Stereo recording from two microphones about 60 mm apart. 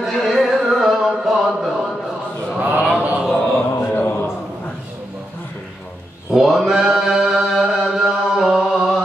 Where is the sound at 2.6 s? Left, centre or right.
Right.